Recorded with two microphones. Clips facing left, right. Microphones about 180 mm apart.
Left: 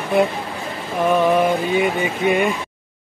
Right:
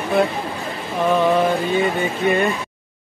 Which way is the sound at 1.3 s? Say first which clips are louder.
Left 1 dB; 10° left (ahead or behind).